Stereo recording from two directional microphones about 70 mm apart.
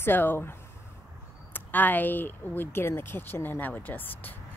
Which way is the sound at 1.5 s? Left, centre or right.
Left.